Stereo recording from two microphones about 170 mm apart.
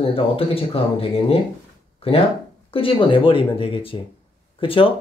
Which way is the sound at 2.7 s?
30° left (ahead or behind).